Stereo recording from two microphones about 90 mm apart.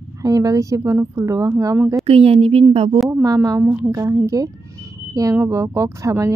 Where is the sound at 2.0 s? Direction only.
90° right.